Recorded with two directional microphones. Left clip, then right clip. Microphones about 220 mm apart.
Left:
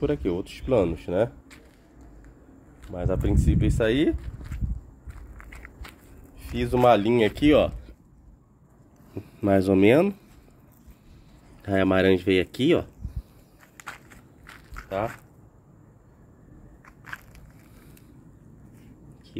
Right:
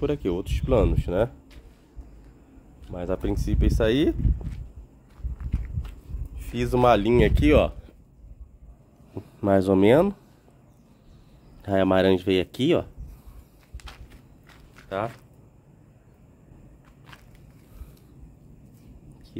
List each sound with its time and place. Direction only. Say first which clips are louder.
0.0 s speech: even; 5° right (ahead or behind)
2.9 s speech: left 1 dB; centre (ahead or behind)
5.5 s walk: right 1 dB; 15° left (ahead or behind)
6.4 s speech: left 1 dB; centre (ahead or behind)
9.1 s speech: right 1 dB; centre (ahead or behind)
11.6 s speech: right 1 dB; centre (ahead or behind)
14.8 s speech: left 1 dB; centre (ahead or behind)